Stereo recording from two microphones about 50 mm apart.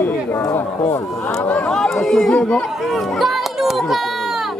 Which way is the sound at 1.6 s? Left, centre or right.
Centre.